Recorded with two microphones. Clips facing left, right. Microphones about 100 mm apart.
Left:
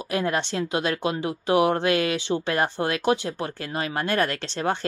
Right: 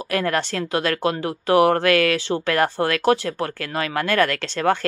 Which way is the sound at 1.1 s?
50° right (ahead or behind).